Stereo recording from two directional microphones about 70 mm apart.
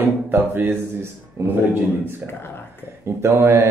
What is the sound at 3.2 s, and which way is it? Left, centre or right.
Speech, right.